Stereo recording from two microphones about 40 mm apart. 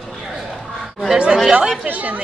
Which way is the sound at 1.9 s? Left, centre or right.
Right.